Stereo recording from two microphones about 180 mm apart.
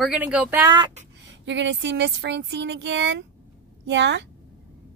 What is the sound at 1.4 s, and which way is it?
A woman's voice, 85° right.